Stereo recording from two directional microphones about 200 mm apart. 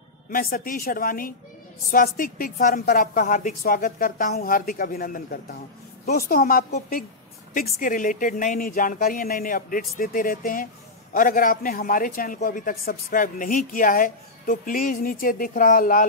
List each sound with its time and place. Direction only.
0.3 s a man's voice: 45° left (ahead or behind)